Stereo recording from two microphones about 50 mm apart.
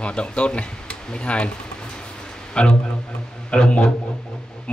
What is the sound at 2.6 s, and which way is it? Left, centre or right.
Speech, left.